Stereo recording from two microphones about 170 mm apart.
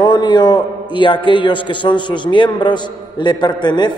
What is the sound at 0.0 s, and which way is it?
A man's voice, 25° left (ahead or behind).